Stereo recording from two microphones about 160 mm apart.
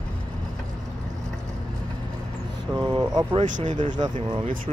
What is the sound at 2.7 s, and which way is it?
Speech, 25° right (ahead or behind).